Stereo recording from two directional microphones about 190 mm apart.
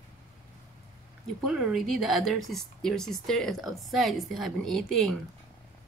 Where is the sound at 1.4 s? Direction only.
Centre (ahead or behind).